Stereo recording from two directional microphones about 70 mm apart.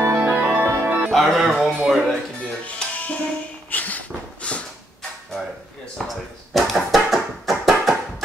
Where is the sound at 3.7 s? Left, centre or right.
Left.